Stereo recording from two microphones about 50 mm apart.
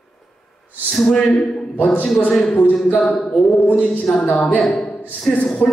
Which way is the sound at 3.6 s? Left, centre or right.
Left.